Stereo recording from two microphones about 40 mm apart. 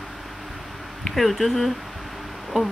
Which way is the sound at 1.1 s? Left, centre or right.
Centre.